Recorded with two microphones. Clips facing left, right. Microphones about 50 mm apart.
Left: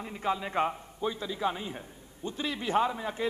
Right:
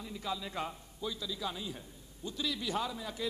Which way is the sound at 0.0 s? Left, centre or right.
Left.